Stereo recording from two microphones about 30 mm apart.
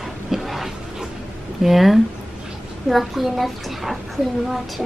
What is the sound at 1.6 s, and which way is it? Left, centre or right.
Speech, centre.